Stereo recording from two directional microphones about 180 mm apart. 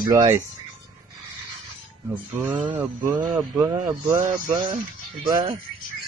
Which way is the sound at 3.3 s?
25° right (ahead or behind).